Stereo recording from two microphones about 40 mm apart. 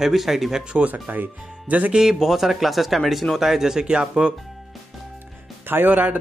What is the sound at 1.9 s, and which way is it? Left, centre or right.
A man's voice, centre.